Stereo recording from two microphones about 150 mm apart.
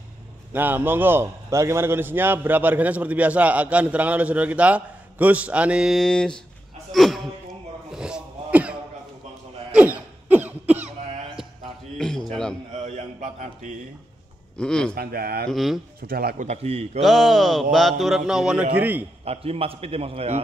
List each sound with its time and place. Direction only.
0.5 s a man's voice: 15° right (ahead or behind)
7.9 s throat clearing: 5° right (ahead or behind)
9.7 s cough: 10° right (ahead or behind)
12.0 s a sound: 5° left (ahead or behind)
12.8 s a man's voice: 55° right (ahead or behind)
14.6 s speech: 5° left (ahead or behind)
15.0 s speech: 90° right
15.5 s speech: centre (ahead or behind)
16.1 s speech: 90° right
16.3 s a man's voice: 45° right (ahead or behind)
17.0 s speech: centre (ahead or behind)
19.2 s a man's voice: 40° right (ahead or behind)